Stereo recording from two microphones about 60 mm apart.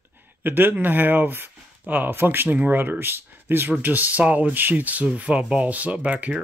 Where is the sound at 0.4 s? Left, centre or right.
Right.